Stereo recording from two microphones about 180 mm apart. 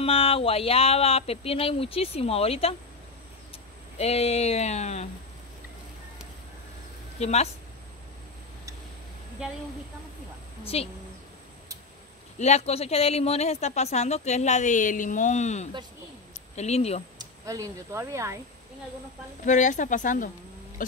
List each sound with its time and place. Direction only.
0.0 s speech: 30° left (ahead or behind)
7.2 s speech: 35° left (ahead or behind)
10.7 s speech: 35° left (ahead or behind)
12.4 s speech: 40° left (ahead or behind)
17.2 s speech: 20° right (ahead or behind)
19.4 s a woman's voice: 45° left (ahead or behind)